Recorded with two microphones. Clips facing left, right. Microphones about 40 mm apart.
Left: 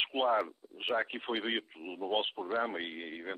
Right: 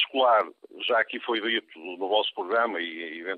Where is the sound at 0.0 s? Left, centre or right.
Right.